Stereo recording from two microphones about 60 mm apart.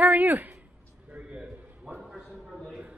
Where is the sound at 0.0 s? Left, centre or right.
Right.